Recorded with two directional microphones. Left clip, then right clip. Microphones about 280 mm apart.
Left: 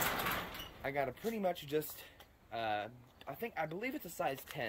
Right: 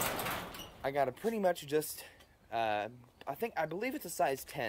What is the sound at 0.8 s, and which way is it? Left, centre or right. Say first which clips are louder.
Speech: right 5 dB; centre.